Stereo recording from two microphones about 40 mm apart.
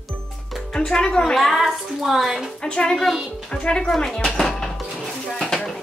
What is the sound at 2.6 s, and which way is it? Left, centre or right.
Speech, left.